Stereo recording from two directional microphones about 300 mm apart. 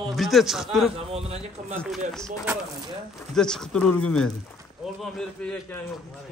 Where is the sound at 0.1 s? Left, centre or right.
Centre.